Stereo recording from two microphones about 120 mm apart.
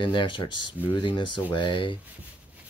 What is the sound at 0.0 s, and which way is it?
Speech, 45° left (ahead or behind).